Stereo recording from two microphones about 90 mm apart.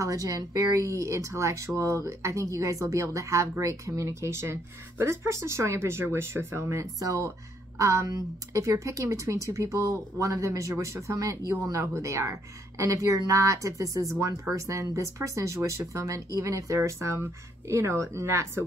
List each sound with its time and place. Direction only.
0.0 s speech: 40° right (ahead or behind)